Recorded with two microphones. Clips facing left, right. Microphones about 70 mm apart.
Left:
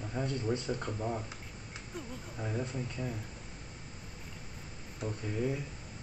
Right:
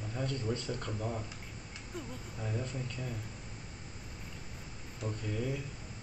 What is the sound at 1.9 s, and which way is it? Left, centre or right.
Speech, centre.